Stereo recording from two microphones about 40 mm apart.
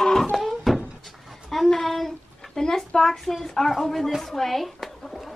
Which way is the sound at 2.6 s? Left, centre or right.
Centre.